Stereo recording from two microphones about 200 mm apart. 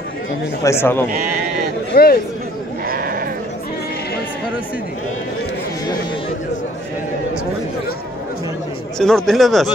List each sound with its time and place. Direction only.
0.7 s speech: 10° left (ahead or behind)
1.9 s speech: 50° left (ahead or behind)
2.9 s sheep: 45° right (ahead or behind)
8.9 s speech: centre (ahead or behind)